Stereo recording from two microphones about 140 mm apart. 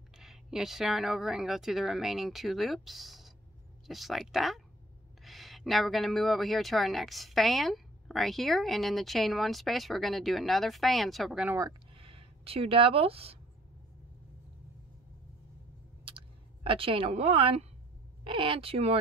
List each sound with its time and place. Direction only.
0.2 s speech: 5° right (ahead or behind)
11.9 s a sound: 40° right (ahead or behind)
16.6 s a woman's voice: 40° right (ahead or behind)